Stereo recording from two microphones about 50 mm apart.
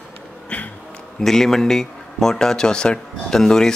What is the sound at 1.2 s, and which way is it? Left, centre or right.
Speech, centre.